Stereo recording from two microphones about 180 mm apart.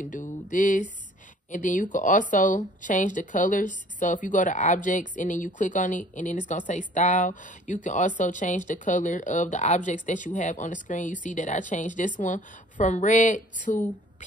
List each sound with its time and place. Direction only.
0.0 s speech: 45° left (ahead or behind)